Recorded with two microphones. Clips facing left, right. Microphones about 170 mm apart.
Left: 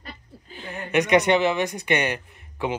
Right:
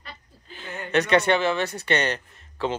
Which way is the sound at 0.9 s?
15° left (ahead or behind).